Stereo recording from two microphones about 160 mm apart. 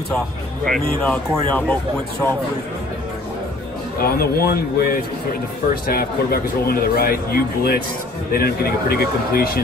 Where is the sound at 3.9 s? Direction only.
70° left (ahead or behind).